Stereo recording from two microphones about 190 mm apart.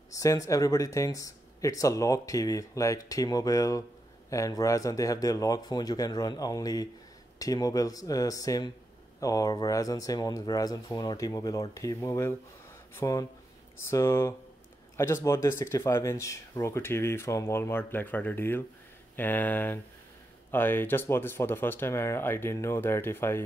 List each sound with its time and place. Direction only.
0.1 s speech: 15° left (ahead or behind)